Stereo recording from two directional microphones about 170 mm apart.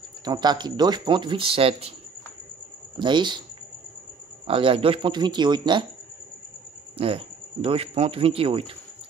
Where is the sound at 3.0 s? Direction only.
25° right (ahead or behind).